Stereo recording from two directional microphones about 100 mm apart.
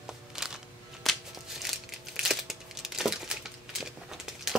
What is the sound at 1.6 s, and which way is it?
Crumpling, 5° right (ahead or behind).